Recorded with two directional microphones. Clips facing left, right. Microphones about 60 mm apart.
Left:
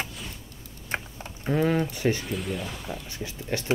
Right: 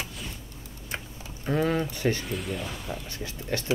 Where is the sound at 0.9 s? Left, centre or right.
Left.